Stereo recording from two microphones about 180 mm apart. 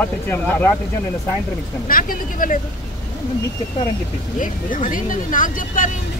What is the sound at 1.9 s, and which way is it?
Speech, 50° left (ahead or behind).